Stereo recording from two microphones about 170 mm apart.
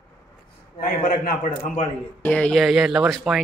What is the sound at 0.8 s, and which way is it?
A man's voice, 55° left (ahead or behind).